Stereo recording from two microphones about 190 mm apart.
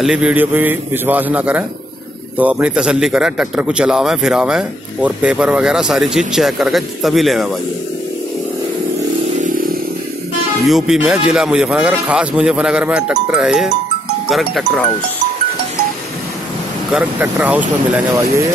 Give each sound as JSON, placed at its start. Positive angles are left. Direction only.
{"t": 0.0, "sound": "a man's voice", "side_deg": -5}
{"t": 9.4, "sound": "a sound", "side_deg": -45}
{"t": 10.6, "sound": "speech", "side_deg": 0}
{"t": 16.9, "sound": "a man's voice", "side_deg": -5}